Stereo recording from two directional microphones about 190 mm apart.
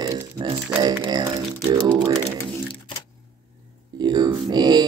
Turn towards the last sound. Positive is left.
turn(degrees=-20)  # may be behind; listen again after turning